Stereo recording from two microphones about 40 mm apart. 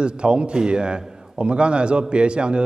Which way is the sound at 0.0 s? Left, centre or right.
Right.